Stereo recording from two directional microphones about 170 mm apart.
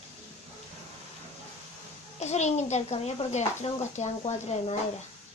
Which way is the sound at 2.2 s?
40° left (ahead or behind).